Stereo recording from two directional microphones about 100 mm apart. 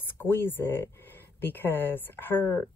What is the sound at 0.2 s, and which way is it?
Speech, 20° left (ahead or behind).